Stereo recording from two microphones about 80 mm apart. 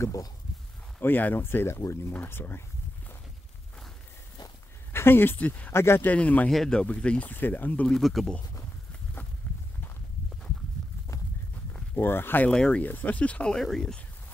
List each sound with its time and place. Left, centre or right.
0.0 s speech: left
1.0 s speech: left
4.9 s speech: left
6.1 s speech: centre
6.5 s speech: centre; by 7.8 s left
7.8 s speech: centre
11.9 s speech: left
12.5 s speech: centre
12.8 s speech: left